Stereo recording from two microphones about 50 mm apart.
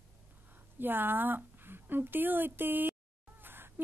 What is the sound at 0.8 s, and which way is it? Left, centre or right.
Speech, right.